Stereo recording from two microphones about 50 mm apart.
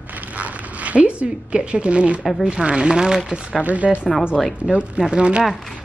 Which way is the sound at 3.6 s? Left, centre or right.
Right.